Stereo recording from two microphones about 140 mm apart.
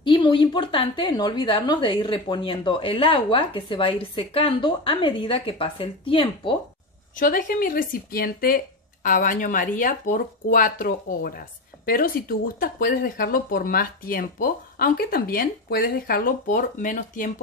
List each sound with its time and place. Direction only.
0.0 s a woman's voice: 35° left (ahead or behind)
7.2 s speech: 75° left (ahead or behind)